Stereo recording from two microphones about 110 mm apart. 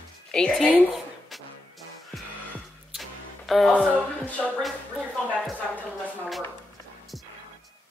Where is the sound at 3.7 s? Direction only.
15° left (ahead or behind).